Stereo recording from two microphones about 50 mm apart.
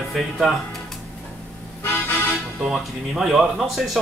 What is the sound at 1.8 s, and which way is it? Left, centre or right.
Music, left.